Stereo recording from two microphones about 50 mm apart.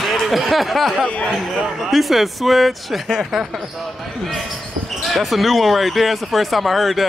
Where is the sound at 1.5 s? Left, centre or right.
Centre.